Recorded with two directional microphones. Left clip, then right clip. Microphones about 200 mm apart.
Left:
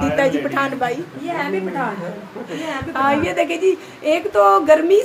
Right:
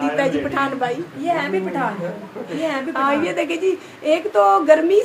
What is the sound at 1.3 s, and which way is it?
Speech, 40° right (ahead or behind).